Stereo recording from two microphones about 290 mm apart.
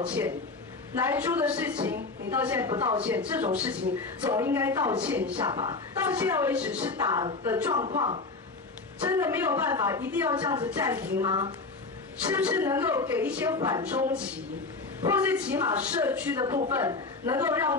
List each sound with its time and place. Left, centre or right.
0.0 s a woman's voice: centre
5.4 s a woman's voice: centre